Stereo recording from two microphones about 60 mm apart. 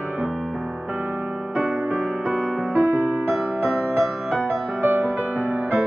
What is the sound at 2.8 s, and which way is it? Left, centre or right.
Music, right.